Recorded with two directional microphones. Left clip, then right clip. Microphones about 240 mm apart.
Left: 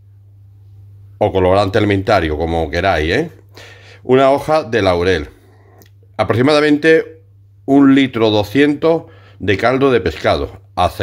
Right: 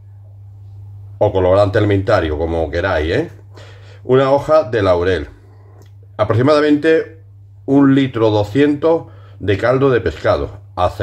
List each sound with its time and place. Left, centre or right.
1.1 s speech: left